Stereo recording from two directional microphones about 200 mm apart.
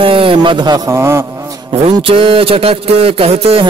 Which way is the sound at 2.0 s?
25° right (ahead or behind).